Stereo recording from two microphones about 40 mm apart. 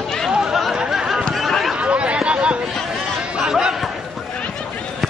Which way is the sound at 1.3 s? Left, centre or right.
Centre.